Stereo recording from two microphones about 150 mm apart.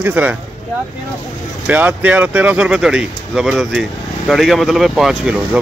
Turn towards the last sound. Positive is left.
turn(degrees=-5)  # may be behind; listen again after turning